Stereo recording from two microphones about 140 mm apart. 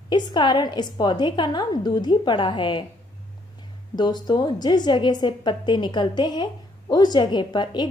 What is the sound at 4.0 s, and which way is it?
A woman's voice, 30° left (ahead or behind).